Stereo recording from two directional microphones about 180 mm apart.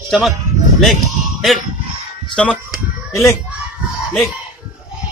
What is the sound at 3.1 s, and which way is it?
Speech, 15° left (ahead or behind).